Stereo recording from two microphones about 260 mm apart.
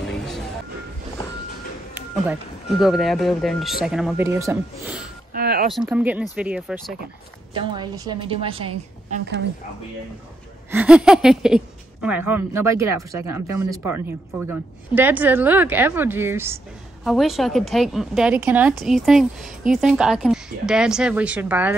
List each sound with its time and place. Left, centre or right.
0.0 s a sound: centre
2.8 s a woman's voice: centre
5.3 s a sound: right
5.7 s a woman's voice: centre
7.5 s a woman's voice: centre
10.7 s a woman's voice: centre